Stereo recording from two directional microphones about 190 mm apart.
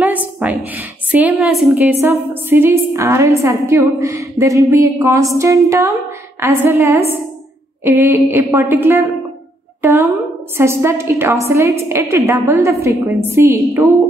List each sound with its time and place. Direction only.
0.0 s a woman's voice: 10° right (ahead or behind)
2.0 s a woman's voice: 10° right (ahead or behind)
9.8 s a sound: 10° right (ahead or behind)
10.6 s a woman's voice: 15° right (ahead or behind)